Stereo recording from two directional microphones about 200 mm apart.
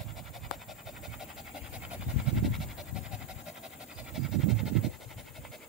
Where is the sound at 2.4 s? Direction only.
Centre (ahead or behind).